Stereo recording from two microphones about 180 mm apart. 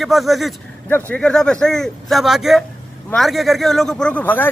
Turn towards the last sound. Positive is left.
turn(degrees=10)  # may be behind; listen again after turning